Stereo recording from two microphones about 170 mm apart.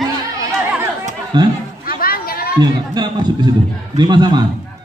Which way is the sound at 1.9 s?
60° left (ahead or behind).